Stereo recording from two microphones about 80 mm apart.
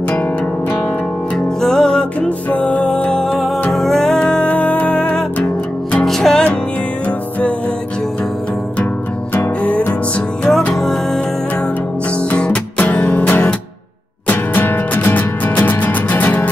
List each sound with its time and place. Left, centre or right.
1.6 s music: centre
6.0 s music: centre
7.1 s music: centre
9.6 s music: centre
10.5 s music: centre
12.2 s music: centre